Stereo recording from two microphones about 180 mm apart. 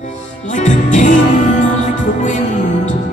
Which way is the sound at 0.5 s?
45° left (ahead or behind).